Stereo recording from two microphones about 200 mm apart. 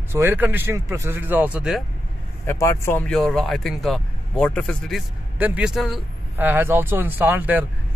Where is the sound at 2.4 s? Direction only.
15° left (ahead or behind).